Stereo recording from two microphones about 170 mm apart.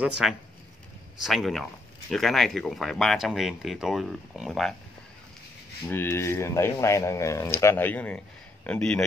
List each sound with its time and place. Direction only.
0.0 s speech: centre (ahead or behind)
5.9 s speech: 10° left (ahead or behind)